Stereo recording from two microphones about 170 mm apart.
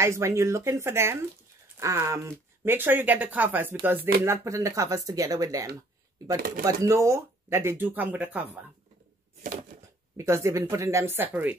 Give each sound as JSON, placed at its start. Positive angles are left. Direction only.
{"t": 0.0, "sound": "speech", "side_deg": -15}
{"t": 10.1, "sound": "speech", "side_deg": -15}